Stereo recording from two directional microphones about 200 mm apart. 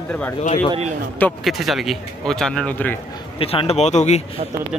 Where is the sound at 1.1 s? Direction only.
5° left (ahead or behind).